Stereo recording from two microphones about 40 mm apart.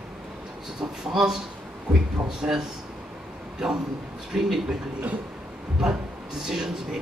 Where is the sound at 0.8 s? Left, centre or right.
Centre.